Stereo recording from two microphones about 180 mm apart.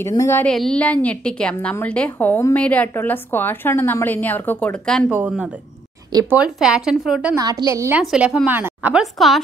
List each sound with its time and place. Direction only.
0.0 s a woman's voice: 15° left (ahead or behind)
0.5 s a woman's voice: 5° left (ahead or behind)
5.1 s speech: 10° right (ahead or behind)
7.3 s a woman's voice: 20° right (ahead or behind)
8.0 s speech: 5° right (ahead or behind)